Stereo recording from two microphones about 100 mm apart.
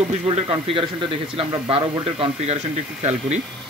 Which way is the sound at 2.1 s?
80° right.